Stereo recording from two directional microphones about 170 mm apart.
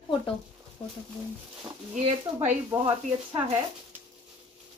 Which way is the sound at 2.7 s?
30° right (ahead or behind).